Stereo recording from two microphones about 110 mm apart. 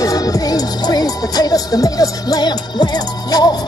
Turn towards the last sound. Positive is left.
turn(degrees=40)  # may be behind; listen again after turning